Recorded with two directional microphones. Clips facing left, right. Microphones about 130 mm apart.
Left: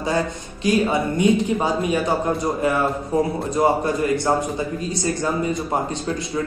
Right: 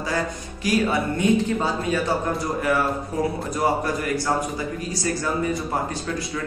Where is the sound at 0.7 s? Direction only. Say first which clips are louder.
Left 3 dB; 20° left (ahead or behind).